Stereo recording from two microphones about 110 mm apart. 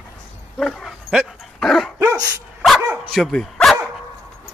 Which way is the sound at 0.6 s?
Centre (ahead or behind).